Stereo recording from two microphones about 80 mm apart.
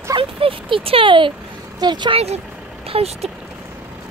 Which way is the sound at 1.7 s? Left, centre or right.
Right.